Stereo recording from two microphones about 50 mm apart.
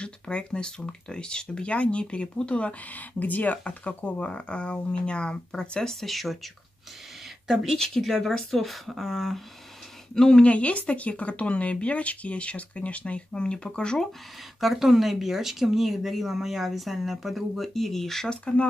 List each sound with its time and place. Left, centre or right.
0.0 s speech: left
2.9 s speech: left; by 5.9 s centre
5.9 s speech: centre
10.1 s speech: centre
10.4 s speech: left
14.6 s speech: centre
18.3 s speech: centre